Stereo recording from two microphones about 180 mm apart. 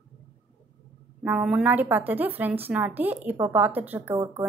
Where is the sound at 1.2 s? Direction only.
5° right (ahead or behind).